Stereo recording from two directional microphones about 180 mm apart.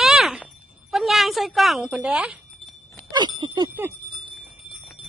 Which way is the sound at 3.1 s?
25° right (ahead or behind).